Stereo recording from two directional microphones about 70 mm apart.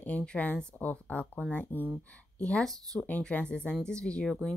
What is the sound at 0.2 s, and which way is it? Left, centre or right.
Speech, centre.